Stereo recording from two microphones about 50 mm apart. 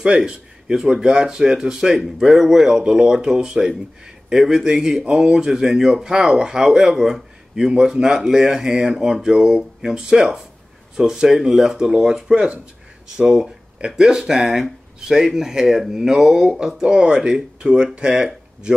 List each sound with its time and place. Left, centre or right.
0.0 s speech: centre
13.7 s speech: centre